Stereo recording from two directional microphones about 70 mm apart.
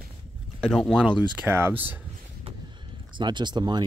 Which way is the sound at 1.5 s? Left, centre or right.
Right.